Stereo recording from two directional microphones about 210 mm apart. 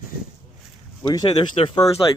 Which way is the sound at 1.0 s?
20° left (ahead or behind).